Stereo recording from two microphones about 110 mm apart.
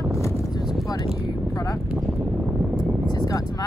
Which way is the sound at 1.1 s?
30° left (ahead or behind).